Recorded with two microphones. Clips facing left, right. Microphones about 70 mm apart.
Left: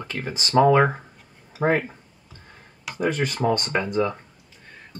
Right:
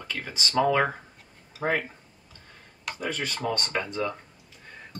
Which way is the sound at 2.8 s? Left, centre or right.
Centre.